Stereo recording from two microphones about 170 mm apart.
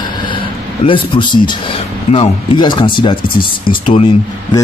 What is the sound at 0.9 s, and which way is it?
A man's voice, 30° left (ahead or behind).